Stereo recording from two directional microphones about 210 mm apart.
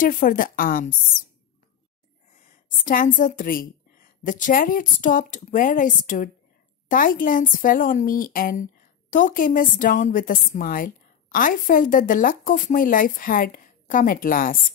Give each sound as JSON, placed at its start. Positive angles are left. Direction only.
{"t": 0.0, "sound": "a woman's voice", "side_deg": 40}
{"t": 2.8, "sound": "a woman's voice", "side_deg": 40}